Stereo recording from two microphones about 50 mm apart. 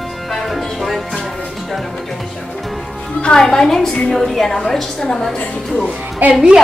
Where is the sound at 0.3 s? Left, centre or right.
Centre.